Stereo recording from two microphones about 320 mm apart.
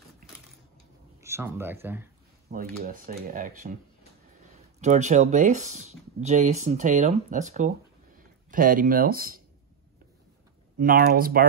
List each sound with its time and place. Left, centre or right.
1.2 s speech: centre
2.5 s speech: right
4.7 s speech: right
10.8 s speech: right